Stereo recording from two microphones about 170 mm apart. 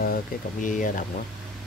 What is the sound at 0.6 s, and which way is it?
Speech, 50° left (ahead or behind).